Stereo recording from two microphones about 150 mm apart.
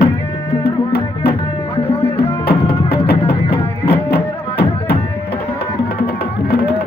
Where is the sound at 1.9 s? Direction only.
40° left (ahead or behind).